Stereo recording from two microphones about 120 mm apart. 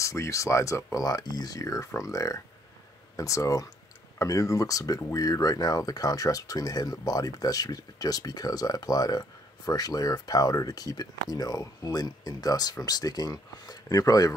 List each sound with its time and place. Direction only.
0.0 s speech: 25° left (ahead or behind)